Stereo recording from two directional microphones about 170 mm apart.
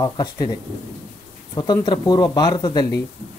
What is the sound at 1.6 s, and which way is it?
Speech, 25° left (ahead or behind).